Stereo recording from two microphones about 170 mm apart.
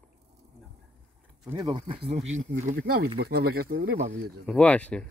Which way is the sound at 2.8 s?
60° right (ahead or behind).